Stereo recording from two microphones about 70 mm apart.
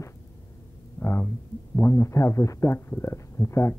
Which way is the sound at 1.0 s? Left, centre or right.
Left.